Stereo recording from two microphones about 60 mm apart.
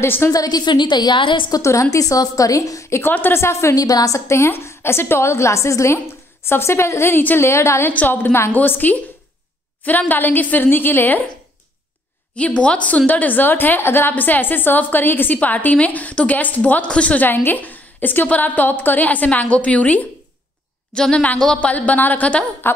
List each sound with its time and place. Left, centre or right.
0.0 s a woman's voice: left
0.3 s a woman's voice: left
1.5 s a woman's voice: left
3.0 s a woman's voice: left
3.3 s a woman's voice: left
3.7 s a woman's voice: left
4.3 s a woman's voice: left
7.8 s a woman's voice: left
12.4 s a woman's voice: centre
17.3 s a woman's voice: left
20.9 s a woman's voice: centre